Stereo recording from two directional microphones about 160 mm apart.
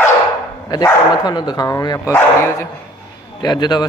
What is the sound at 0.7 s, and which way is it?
Speech, 25° left (ahead or behind).